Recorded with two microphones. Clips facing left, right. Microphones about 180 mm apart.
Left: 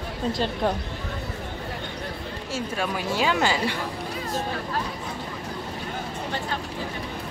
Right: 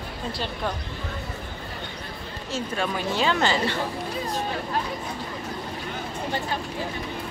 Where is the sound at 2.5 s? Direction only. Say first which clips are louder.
Right 1 dB; 10° left (ahead or behind).